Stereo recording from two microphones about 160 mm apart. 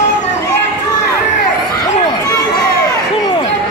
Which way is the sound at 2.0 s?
20° left (ahead or behind).